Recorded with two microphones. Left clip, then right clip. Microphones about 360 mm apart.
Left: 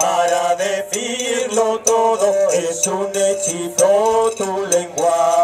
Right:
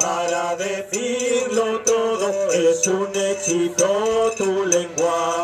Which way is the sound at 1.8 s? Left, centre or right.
Centre.